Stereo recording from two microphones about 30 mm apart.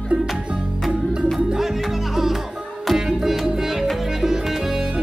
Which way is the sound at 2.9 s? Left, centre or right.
Centre.